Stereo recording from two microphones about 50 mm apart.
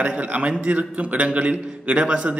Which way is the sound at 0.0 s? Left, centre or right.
Right.